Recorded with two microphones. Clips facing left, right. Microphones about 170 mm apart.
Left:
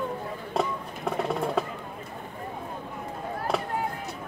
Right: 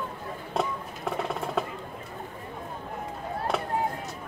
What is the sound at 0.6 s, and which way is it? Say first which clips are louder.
Music: left 1 dB; centre (ahead or behind).